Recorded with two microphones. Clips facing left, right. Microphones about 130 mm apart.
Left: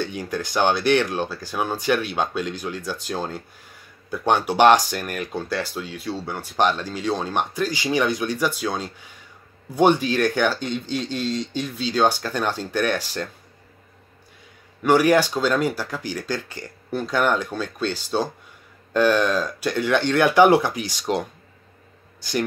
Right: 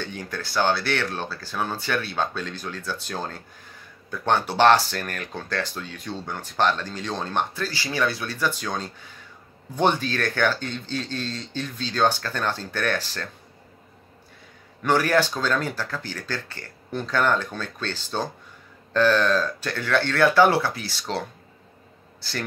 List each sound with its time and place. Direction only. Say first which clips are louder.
0.0 s speech: left 6 dB; 10° left (ahead or behind)
14.8 s speech: left 4 dB; 15° left (ahead or behind)